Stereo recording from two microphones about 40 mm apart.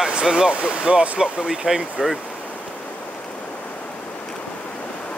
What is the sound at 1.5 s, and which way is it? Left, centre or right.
Speech, centre.